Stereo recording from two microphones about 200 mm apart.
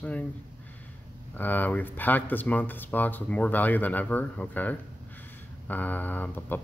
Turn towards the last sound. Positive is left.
turn(degrees=10)  # may be behind; listen again after turning